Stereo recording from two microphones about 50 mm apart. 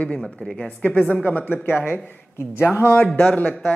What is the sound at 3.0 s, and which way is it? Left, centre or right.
Speech, left.